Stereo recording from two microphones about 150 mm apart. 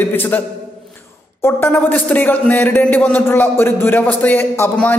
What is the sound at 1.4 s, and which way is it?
Speech, 10° left (ahead or behind).